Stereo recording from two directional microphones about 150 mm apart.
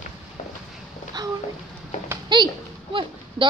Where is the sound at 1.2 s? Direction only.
25° right (ahead or behind).